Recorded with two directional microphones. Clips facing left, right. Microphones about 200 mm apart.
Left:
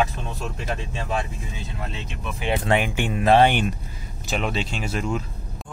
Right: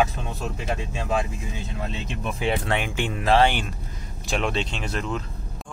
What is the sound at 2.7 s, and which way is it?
Speech, 10° left (ahead or behind).